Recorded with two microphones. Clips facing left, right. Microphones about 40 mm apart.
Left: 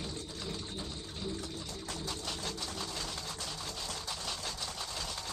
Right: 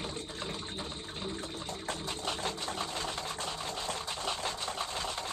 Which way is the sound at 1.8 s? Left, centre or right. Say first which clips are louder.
Right 4 dB; right.